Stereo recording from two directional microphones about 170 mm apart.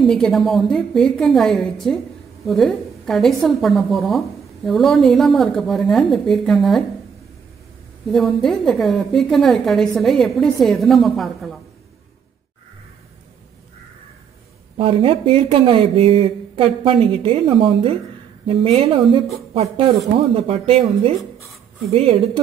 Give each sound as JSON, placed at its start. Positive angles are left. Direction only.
{"t": 0.0, "sound": "a woman's voice", "side_deg": 0}
{"t": 8.1, "sound": "a woman's voice", "side_deg": 0}
{"t": 14.8, "sound": "speech", "side_deg": -30}